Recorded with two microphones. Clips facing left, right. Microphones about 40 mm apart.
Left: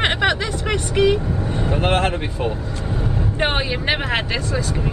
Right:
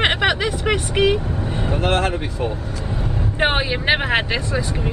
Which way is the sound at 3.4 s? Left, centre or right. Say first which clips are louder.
Right 3 dB; centre.